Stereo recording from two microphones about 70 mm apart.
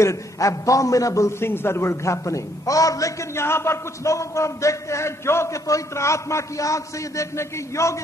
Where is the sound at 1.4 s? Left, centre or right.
Left.